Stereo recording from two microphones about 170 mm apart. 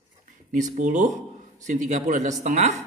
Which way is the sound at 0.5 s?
45° right (ahead or behind).